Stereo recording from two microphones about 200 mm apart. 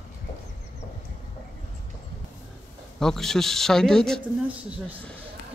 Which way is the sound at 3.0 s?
Centre (ahead or behind).